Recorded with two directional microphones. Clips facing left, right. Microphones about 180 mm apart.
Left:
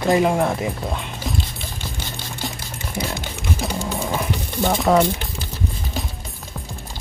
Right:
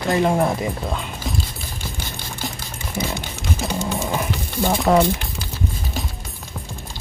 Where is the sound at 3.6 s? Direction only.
Centre (ahead or behind).